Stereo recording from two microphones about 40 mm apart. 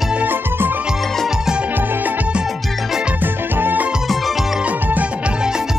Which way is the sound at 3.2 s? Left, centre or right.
Right.